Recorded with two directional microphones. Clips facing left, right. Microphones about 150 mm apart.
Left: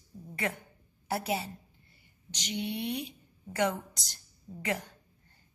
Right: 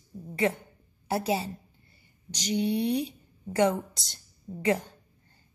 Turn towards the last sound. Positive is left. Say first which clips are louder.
# right 8 dB
turn(degrees=-30)  # may be behind; listen again after turning